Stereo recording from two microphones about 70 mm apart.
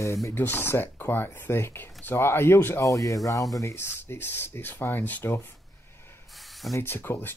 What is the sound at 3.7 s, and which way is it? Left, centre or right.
Speech, left.